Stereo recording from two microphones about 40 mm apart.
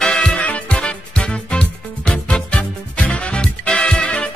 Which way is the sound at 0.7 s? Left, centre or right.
Left.